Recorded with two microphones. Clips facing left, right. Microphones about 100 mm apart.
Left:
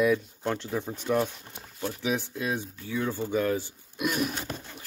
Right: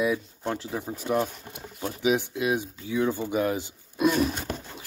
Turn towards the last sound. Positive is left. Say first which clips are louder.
# right 6 dB
turn(degrees=-30)  # may be behind; listen again after turning